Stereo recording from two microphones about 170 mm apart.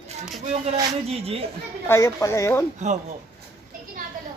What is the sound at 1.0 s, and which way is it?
Speech, 35° right (ahead or behind).